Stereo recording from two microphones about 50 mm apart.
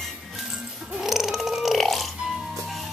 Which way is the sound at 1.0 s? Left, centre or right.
Centre.